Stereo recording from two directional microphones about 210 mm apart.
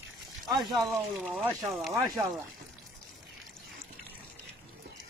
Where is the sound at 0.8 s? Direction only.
Centre (ahead or behind).